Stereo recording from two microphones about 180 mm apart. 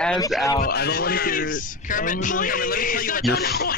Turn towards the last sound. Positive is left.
turn(degrees=60)  # may be behind; listen again after turning